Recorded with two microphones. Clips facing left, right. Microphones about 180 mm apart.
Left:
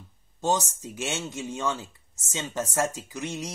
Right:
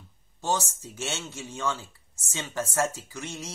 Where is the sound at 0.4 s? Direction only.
20° left (ahead or behind).